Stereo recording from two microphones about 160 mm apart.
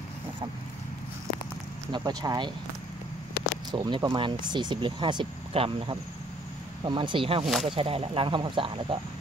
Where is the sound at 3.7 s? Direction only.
25° right (ahead or behind).